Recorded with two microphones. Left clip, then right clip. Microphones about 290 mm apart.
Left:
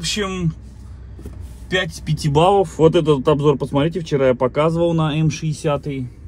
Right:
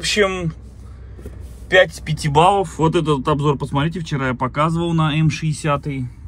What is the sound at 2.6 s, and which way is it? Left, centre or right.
Speech, centre.